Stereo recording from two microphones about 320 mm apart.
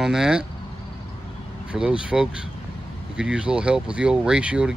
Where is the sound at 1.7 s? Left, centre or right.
Centre.